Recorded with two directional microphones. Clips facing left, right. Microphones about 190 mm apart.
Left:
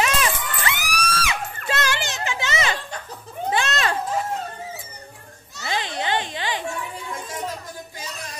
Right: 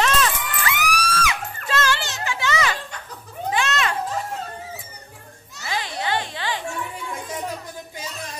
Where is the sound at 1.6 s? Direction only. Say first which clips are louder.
Right 2 dB; 15° left (ahead or behind).